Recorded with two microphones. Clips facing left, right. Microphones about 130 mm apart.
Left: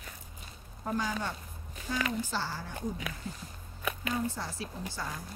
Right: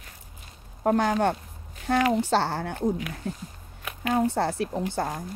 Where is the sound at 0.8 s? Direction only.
65° right (ahead or behind).